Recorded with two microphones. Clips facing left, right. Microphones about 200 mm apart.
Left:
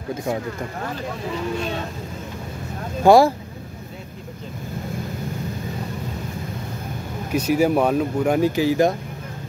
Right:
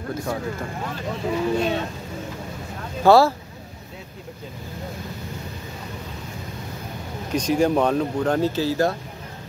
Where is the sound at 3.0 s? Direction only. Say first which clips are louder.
Left 2 dB; 15° left (ahead or behind).